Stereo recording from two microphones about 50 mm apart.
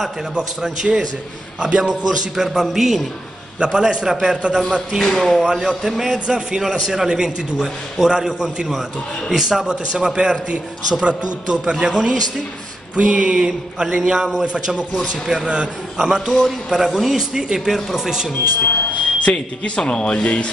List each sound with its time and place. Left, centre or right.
0.3 s a man's voice: centre
2.0 s a man's voice: centre
3.5 s a man's voice: centre
5.0 s speech: centre
5.3 s a man's voice: centre
12.9 s a sound: right
13.5 s a man's voice: centre
14.4 s a sound: centre
15.2 s a man's voice: centre
16.0 s a man's voice: centre
18.6 s smoke detector: left
19.6 s speech: centre
20.2 s rub: left